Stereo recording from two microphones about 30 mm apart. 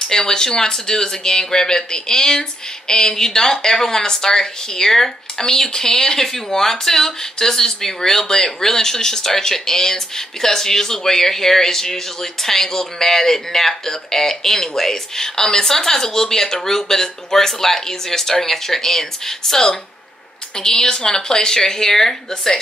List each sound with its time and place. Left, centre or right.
0.1 s speech: left
20.5 s speech: left